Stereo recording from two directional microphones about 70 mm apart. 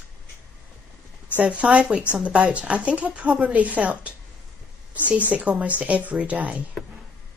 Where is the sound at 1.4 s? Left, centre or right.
Centre.